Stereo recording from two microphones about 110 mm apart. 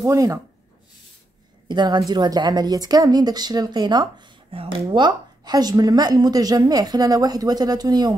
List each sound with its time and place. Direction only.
0.0 s a woman's voice: 30° right (ahead or behind)
1.7 s a woman's voice: 40° right (ahead or behind)
4.5 s speech: 55° right (ahead or behind)
4.9 s a woman's voice: 40° right (ahead or behind)